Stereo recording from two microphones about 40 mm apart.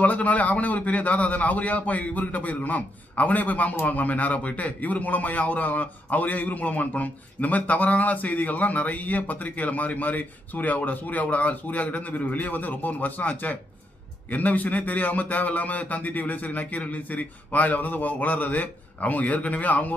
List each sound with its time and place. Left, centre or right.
0.0 s a man's voice: left